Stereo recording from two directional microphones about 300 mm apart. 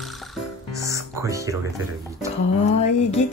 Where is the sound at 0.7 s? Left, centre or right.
Centre.